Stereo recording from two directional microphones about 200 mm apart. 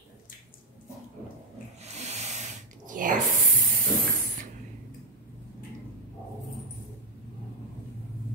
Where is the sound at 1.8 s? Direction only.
35° right (ahead or behind).